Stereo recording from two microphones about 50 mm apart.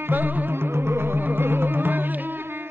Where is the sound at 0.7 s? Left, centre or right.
Right.